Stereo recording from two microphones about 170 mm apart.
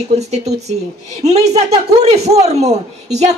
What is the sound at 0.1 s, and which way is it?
Speech, 40° right (ahead or behind).